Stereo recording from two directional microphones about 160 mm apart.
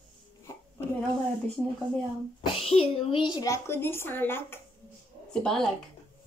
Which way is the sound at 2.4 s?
35° left (ahead or behind).